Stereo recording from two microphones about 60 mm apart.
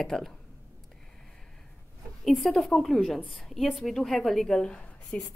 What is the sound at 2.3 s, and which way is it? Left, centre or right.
A woman's voice, centre.